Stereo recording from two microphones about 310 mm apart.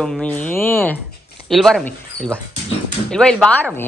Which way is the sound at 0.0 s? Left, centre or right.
Centre.